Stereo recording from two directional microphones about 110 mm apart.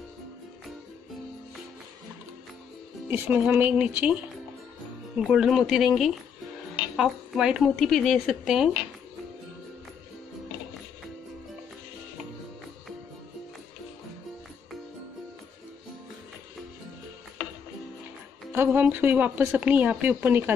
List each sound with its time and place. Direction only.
3.1 s speech: 20° right (ahead or behind); by 5.9 s 5° right (ahead or behind)
7.0 s speech: 5° right (ahead or behind)
18.5 s speech: 20° right (ahead or behind)